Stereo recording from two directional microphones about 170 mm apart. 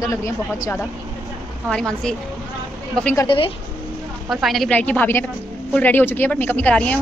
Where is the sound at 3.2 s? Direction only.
30° left (ahead or behind).